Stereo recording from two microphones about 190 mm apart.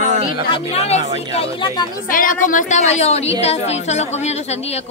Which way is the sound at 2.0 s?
45° left (ahead or behind).